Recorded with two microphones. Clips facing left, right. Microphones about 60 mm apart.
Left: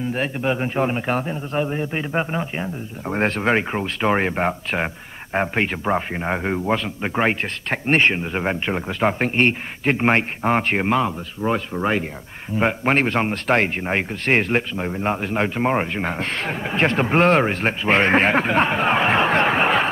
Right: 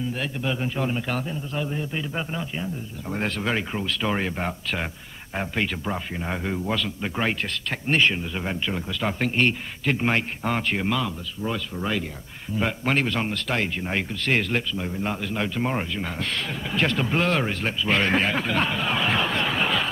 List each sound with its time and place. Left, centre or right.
0.1 s speech: left